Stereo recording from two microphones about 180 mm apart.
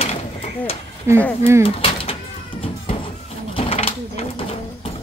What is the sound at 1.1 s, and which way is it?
Speech, 15° right (ahead or behind).